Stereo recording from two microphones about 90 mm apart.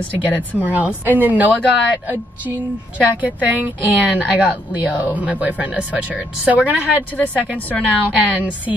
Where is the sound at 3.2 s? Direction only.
20° right (ahead or behind).